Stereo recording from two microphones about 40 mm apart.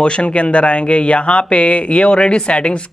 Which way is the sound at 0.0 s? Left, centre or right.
Left.